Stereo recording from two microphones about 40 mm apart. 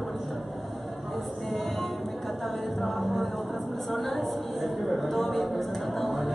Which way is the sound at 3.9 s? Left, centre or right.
Centre.